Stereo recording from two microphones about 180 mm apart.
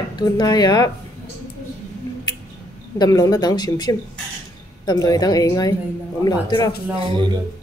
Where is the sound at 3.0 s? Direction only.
20° left (ahead or behind).